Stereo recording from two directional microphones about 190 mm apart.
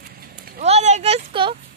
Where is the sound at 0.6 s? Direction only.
35° right (ahead or behind).